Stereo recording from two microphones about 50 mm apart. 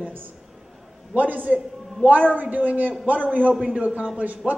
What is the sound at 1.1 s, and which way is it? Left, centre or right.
A man's voice, right.